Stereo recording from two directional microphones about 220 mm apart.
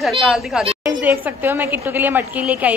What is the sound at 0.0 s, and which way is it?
A woman's voice, centre (ahead or behind).